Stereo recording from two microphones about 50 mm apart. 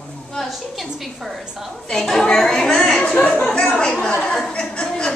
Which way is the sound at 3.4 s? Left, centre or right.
Centre.